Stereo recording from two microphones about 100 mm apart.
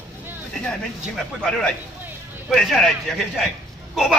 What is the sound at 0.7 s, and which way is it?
Speech, 5° left (ahead or behind).